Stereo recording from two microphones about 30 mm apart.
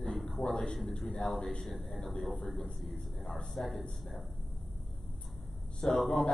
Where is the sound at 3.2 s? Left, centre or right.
Centre.